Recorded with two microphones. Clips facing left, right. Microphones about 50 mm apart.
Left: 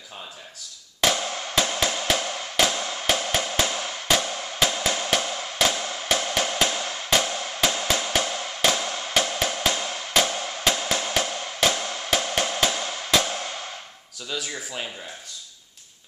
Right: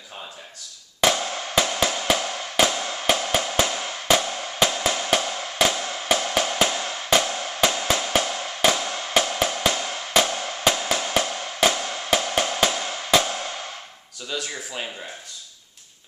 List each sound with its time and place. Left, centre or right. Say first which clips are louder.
1.0 s music: right 2 dB; centre
6.2 s music: right 2 dB; centre
8.0 s music: right 2 dB; centre
14.3 s speech: right 1 dB; centre